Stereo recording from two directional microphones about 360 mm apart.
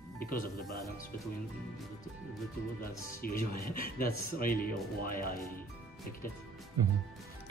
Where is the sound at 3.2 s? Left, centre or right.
Left.